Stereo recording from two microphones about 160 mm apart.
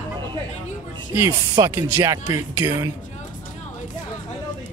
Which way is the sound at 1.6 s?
15° right (ahead or behind).